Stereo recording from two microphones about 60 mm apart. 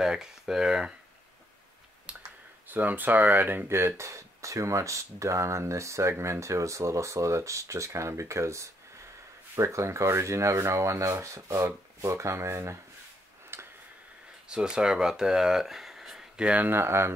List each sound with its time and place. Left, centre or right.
0.0 s speech: centre
2.1 s clicking: centre
2.7 s speech: right
13.5 s a sound: right
14.5 s speech: centre
16.4 s speech: right
16.7 s speech: right